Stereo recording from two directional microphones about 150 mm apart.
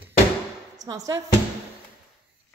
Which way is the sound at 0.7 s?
25° right (ahead or behind).